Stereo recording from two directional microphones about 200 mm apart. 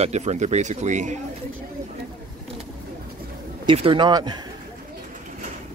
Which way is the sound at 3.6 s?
25° right (ahead or behind).